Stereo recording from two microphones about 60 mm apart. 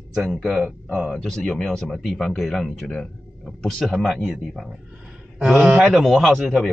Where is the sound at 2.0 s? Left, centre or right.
Centre.